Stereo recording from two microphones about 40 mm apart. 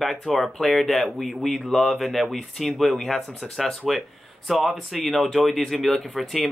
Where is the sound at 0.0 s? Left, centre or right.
Centre.